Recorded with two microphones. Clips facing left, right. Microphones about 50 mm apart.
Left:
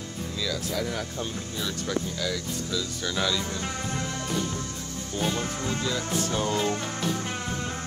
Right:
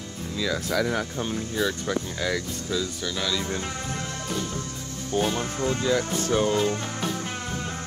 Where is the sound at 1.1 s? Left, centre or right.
Centre.